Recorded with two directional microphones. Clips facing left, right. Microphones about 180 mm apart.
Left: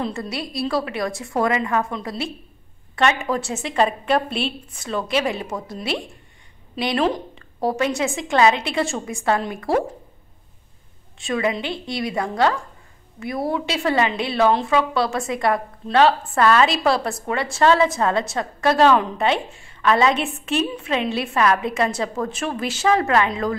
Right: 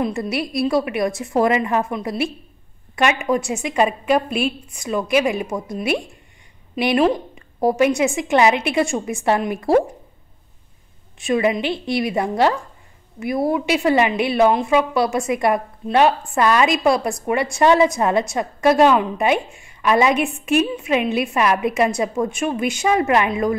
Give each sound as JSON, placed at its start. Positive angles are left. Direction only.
{"t": 0.0, "sound": "a woman's voice", "side_deg": -20}
{"t": 6.7, "sound": "a woman's voice", "side_deg": -15}
{"t": 11.2, "sound": "a woman's voice", "side_deg": -20}